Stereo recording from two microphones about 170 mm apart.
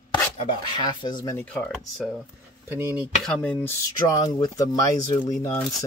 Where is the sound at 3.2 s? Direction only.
5° left (ahead or behind).